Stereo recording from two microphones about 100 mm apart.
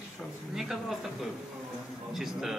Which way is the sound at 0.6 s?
5° right (ahead or behind).